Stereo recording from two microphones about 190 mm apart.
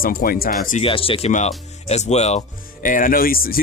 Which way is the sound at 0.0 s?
50° left (ahead or behind).